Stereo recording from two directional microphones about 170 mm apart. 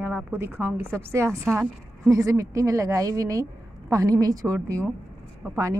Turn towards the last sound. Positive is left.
turn(degrees=-15)  # may be behind; listen again after turning